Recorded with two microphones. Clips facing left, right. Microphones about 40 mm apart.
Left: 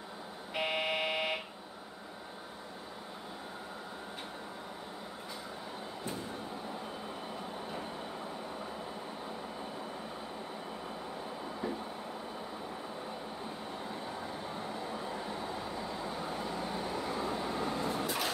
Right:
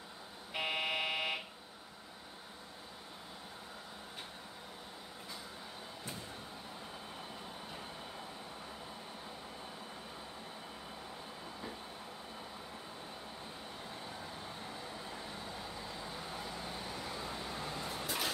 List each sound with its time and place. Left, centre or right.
0.6 s buzzer: centre
13.8 s vehicle: centre